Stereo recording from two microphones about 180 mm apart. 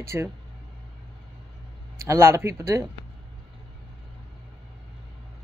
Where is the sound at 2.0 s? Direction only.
15° right (ahead or behind).